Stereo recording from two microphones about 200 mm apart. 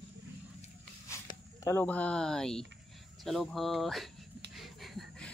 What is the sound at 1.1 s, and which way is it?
Speech, 15° left (ahead or behind).